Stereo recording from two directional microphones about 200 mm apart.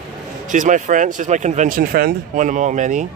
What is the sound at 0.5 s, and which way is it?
Speech, 40° right (ahead or behind).